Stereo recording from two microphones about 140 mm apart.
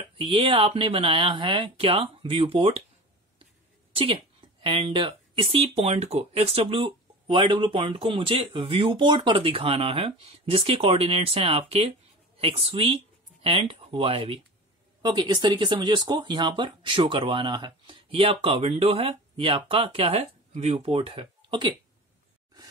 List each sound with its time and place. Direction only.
0.2 s speech: 40° right (ahead or behind)
3.9 s speech: 40° right (ahead or behind)